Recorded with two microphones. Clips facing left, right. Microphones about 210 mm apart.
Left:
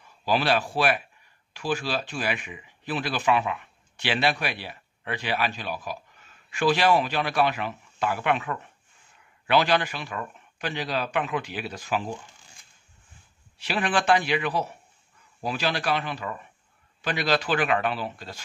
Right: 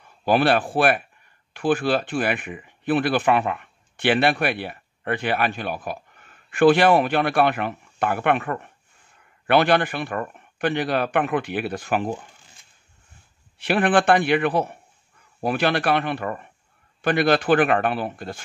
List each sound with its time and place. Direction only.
0.2 s speech: 55° right (ahead or behind)
13.6 s speech: 55° right (ahead or behind)